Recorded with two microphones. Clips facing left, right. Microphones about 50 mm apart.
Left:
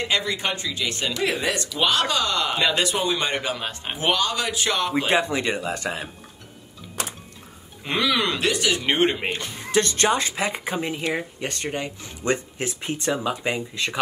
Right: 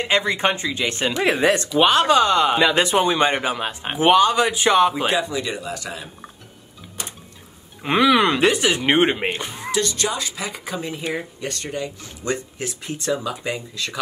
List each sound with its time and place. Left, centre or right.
0.1 s speech: right
5.1 s speech: left
7.8 s speech: right
9.7 s speech: left